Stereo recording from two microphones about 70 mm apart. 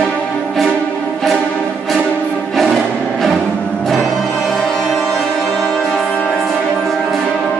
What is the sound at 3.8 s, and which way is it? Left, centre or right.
Music, centre.